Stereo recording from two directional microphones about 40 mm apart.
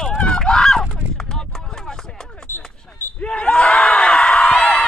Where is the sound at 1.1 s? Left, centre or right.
Centre.